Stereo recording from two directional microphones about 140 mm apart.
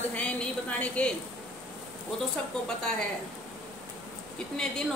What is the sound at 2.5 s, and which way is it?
Speech, 5° left (ahead or behind).